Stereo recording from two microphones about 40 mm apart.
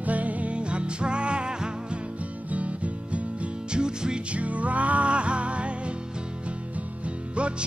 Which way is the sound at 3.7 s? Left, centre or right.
Right.